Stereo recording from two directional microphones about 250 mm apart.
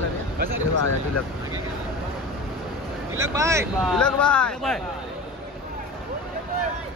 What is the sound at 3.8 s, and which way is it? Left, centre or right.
Speech, centre.